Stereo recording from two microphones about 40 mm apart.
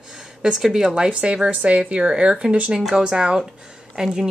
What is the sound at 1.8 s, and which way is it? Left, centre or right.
A woman's voice, centre.